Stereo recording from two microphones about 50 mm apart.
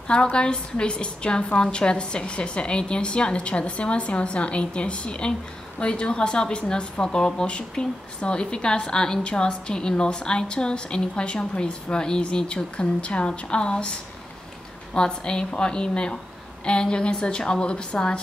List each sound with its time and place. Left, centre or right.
0.1 s a woman's voice: centre
15.0 s a woman's voice: centre